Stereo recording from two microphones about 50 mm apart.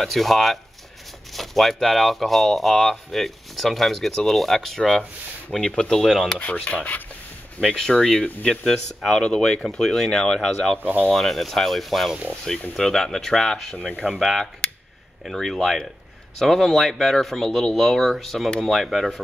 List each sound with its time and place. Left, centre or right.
0.0 s speech: centre
6.3 s rub: left
8.0 s speech: centre
10.8 s speech: right
11.1 s speech: centre